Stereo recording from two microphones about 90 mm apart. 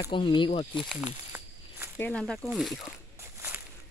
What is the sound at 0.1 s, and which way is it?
Speech, 65° left (ahead or behind).